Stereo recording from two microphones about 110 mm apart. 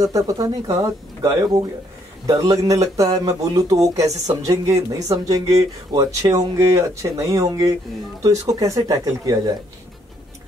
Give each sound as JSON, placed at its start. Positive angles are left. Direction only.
{"t": 0.0, "sound": "speech", "side_deg": -30}